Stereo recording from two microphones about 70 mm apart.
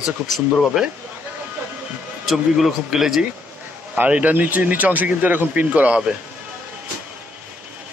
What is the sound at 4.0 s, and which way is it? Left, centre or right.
Speech, right.